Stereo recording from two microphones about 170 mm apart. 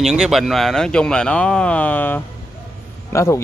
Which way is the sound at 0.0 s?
5° right (ahead or behind).